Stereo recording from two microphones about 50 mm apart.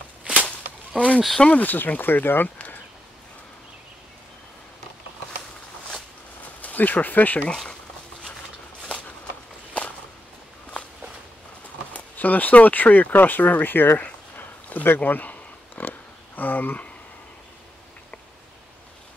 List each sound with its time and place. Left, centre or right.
0.2 s whip: right
0.5 s a sound: left
1.6 s speech: left
6.6 s speech: left
11.9 s speech: left
14.3 s a sound: left